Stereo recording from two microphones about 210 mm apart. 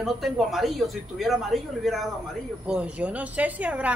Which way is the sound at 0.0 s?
Centre (ahead or behind).